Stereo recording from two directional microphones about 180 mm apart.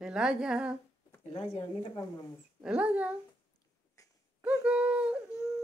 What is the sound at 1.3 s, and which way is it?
Speech, 35° left (ahead or behind).